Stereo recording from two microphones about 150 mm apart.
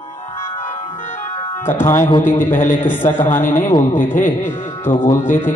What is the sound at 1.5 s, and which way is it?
Speech, 15° left (ahead or behind).